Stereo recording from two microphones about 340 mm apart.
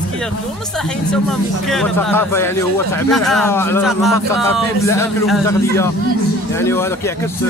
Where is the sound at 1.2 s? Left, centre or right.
Centre.